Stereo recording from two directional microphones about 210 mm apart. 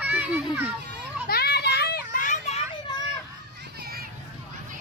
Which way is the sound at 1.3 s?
50° left (ahead or behind).